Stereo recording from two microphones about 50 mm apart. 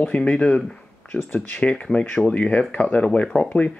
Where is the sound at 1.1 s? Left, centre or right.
Left.